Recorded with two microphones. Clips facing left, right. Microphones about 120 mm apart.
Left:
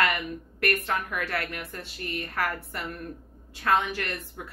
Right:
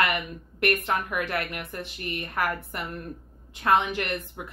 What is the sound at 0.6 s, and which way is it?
A woman's voice, 20° right (ahead or behind).